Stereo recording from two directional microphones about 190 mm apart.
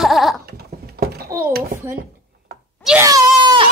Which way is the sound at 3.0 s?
20° right (ahead or behind).